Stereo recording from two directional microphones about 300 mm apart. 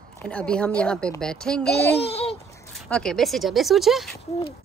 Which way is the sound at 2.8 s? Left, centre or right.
Centre.